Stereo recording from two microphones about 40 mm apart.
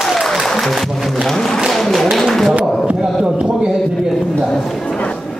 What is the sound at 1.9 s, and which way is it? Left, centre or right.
Music, centre.